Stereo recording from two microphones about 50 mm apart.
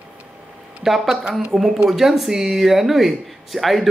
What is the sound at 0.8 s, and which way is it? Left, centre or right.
Speech, centre.